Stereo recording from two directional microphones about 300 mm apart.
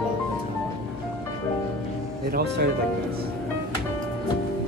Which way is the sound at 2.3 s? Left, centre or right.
Right.